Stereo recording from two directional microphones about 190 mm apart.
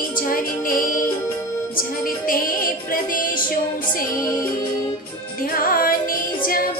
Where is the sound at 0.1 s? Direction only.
50° left (ahead or behind).